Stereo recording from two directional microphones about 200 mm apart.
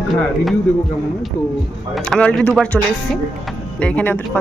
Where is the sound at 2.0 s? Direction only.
5° left (ahead or behind).